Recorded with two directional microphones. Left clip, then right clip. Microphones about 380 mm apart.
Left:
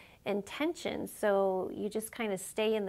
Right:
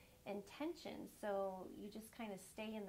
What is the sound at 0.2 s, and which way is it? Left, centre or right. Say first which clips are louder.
A woman's voice: left 14 dB; left.